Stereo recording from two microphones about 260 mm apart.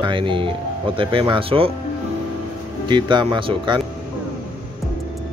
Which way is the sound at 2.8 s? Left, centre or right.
Centre.